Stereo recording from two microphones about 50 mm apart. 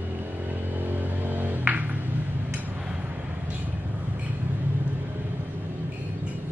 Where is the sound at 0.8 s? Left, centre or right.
Right.